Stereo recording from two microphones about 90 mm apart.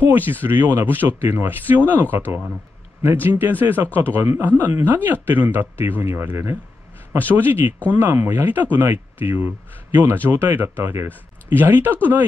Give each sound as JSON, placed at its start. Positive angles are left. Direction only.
{"t": 0.0, "sound": "a man's voice", "side_deg": -20}